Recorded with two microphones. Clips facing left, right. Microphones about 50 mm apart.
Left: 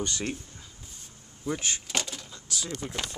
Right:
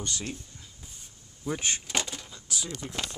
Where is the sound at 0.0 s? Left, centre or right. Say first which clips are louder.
Left 4 dB; left.